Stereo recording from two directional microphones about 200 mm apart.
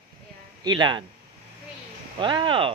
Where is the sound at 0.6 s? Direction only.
20° right (ahead or behind).